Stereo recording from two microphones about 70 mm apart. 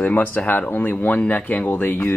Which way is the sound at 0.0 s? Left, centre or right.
Left.